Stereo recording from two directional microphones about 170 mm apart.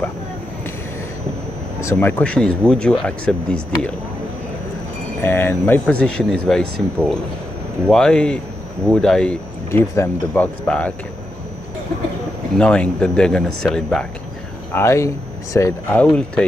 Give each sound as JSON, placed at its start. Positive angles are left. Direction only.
{"t": 1.8, "sound": "speech", "side_deg": 15}
{"t": 5.2, "sound": "speech", "side_deg": 15}
{"t": 12.5, "sound": "speech", "side_deg": 5}
{"t": 14.7, "sound": "speech", "side_deg": 15}
{"t": 15.9, "sound": "speech", "side_deg": 5}